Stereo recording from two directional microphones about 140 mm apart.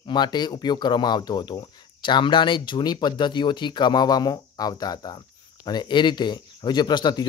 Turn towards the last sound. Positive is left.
turn(degrees=30)  # may be behind; listen again after turning